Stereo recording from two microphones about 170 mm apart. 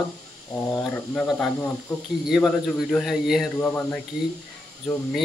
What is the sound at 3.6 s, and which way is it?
Speech, 10° left (ahead or behind).